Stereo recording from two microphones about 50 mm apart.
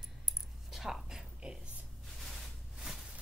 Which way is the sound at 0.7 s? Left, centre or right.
Centre.